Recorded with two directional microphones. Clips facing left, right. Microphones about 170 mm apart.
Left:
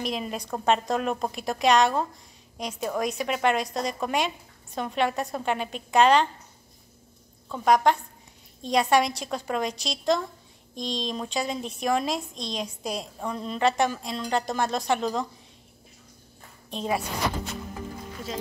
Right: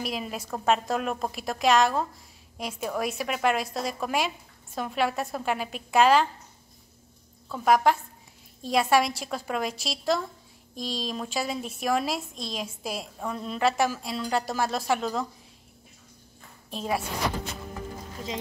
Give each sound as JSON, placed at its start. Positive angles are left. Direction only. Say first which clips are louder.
{"t": 0.0, "sound": "a woman's voice", "louder": "left 2 dB", "side_deg": -5}
{"t": 7.4, "sound": "a woman's voice", "louder": "left 1 dB", "side_deg": -5}
{"t": 16.7, "sound": "a woman's voice", "louder": "left 1 dB", "side_deg": 0}